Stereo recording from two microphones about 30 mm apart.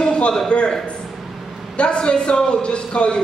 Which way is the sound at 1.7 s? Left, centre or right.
Left.